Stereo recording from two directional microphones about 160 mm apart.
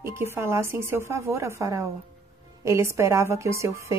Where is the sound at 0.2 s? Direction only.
15° right (ahead or behind).